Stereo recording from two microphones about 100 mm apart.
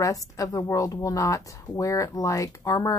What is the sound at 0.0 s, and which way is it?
Speech, 35° left (ahead or behind).